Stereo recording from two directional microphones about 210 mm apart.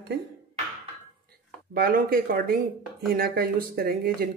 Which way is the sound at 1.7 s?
45° right (ahead or behind).